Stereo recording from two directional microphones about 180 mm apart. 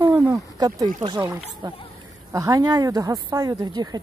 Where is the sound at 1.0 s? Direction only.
25° right (ahead or behind).